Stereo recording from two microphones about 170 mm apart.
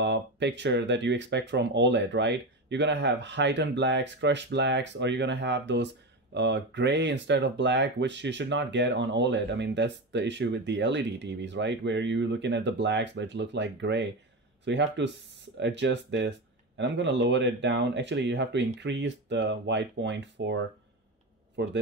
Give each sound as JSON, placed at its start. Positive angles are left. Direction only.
{"t": 0.0, "sound": "speech", "side_deg": -90}